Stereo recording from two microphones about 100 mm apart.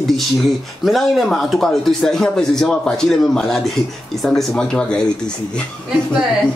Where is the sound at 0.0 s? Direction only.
Centre (ahead or behind).